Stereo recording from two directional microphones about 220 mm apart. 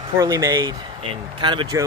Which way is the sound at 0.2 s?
15° right (ahead or behind).